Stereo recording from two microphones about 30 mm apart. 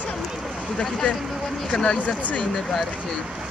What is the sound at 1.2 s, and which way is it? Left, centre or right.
Speech, centre.